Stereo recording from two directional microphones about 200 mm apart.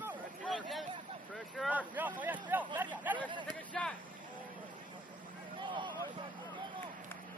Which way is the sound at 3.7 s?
5° left (ahead or behind).